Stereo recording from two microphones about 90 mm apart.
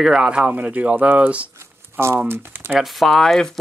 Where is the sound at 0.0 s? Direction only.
10° right (ahead or behind); by 2.7 s 25° right (ahead or behind).